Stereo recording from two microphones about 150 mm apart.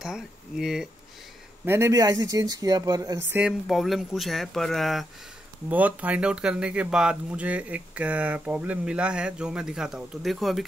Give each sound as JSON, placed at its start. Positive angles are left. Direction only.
{"t": 0.0, "sound": "speech", "side_deg": -5}
{"t": 1.7, "sound": "speech", "side_deg": -20}
{"t": 3.3, "sound": "speech", "side_deg": -10}
{"t": 5.7, "sound": "speech", "side_deg": -10}